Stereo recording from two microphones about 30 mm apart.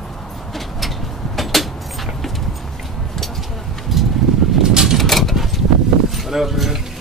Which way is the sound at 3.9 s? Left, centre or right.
Centre.